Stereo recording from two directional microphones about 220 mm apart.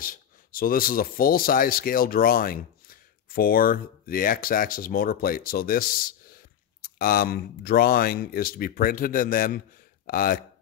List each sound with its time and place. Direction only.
0.0 s a man's voice: 40° left (ahead or behind)